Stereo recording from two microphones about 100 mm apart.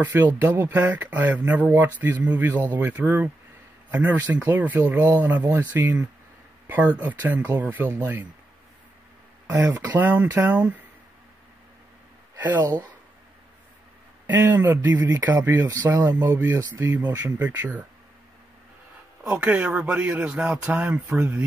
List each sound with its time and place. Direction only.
0.0 s speech: 15° right (ahead or behind)
9.5 s speech: 15° right (ahead or behind)
12.4 s speech: 15° right (ahead or behind)
14.2 s speech: 20° right (ahead or behind)
17.0 s speech: 40° right (ahead or behind)
17.3 s speech: 15° right (ahead or behind)
19.2 s speech: 15° right (ahead or behind)